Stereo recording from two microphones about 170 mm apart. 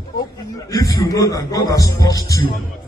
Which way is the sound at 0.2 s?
20° left (ahead or behind).